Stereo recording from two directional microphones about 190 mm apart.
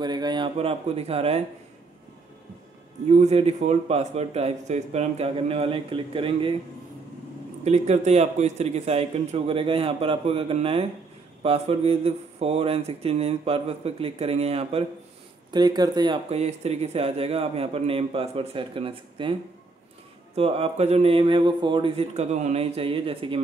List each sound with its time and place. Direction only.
0.0 s speech: 20° right (ahead or behind)
3.1 s speech: 35° right (ahead or behind)
7.6 s speech: 35° right (ahead or behind)
15.5 s speech: 20° right (ahead or behind)
20.3 s speech: 30° right (ahead or behind)